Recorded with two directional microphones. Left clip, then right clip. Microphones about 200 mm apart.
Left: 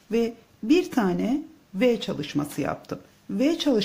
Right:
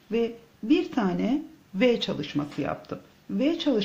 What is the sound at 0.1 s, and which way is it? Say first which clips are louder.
A woman's voice: left 2 dB; 20° left (ahead or behind).